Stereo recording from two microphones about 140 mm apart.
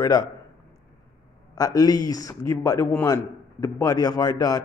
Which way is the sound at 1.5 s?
25° left (ahead or behind).